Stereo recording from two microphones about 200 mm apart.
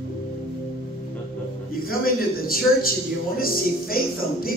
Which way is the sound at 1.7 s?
45° left (ahead or behind).